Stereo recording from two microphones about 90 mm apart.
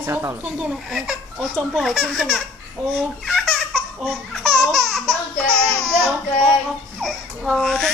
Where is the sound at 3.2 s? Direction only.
5° left (ahead or behind).